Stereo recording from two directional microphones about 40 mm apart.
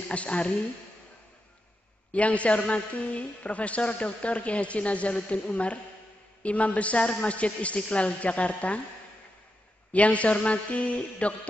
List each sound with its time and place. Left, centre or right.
0.1 s a woman's voice: left
2.1 s a woman's voice: left
9.9 s a woman's voice: left